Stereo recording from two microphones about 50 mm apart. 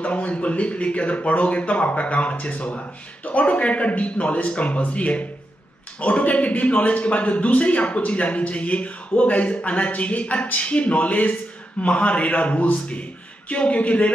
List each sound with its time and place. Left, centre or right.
0.0 s speech: left